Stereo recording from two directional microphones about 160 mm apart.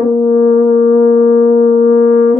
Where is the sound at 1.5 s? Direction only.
40° left (ahead or behind).